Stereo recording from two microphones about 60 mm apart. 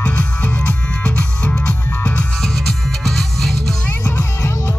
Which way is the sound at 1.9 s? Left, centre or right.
Left.